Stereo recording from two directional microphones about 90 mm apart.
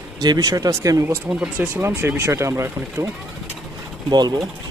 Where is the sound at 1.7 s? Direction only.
25° right (ahead or behind).